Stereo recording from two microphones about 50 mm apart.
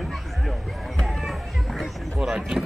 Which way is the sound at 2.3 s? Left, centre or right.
Centre.